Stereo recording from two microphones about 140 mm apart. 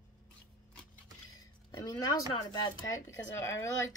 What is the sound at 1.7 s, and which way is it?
Speech, 30° left (ahead or behind).